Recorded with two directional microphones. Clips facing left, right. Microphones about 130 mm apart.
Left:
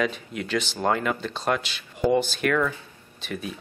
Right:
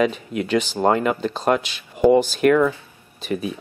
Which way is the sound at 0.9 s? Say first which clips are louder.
Right 5 dB; 10° right (ahead or behind).